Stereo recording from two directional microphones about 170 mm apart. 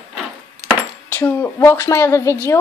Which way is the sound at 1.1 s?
10° left (ahead or behind).